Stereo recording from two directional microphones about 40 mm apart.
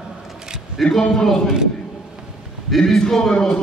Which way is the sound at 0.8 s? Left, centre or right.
Centre.